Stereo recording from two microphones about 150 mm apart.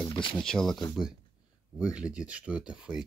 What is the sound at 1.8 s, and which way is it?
Speech, 5° right (ahead or behind).